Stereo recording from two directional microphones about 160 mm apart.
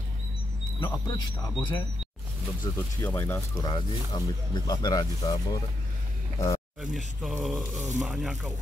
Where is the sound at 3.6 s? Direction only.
25° left (ahead or behind).